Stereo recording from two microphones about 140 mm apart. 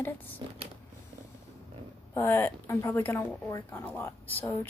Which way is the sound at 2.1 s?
20° left (ahead or behind).